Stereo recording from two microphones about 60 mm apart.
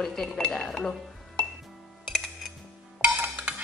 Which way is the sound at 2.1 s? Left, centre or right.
Centre.